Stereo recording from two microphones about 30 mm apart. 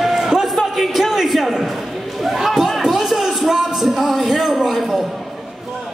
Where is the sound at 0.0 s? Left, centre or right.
Centre.